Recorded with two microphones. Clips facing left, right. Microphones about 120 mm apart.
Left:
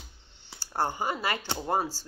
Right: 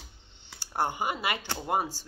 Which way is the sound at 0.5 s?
15° right (ahead or behind).